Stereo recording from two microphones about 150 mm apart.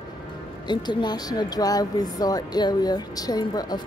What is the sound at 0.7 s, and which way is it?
Speech, 30° left (ahead or behind).